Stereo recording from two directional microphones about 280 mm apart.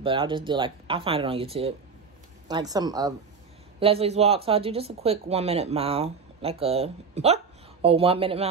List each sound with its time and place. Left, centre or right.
0.0 s speech: centre